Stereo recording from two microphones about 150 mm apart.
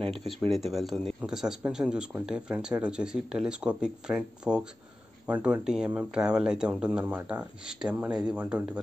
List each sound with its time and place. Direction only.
0.0 s speech: 40° right (ahead or behind)
0.7 s speech: centre (ahead or behind)